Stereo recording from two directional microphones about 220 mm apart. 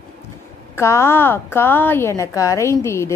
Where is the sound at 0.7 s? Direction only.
10° left (ahead or behind).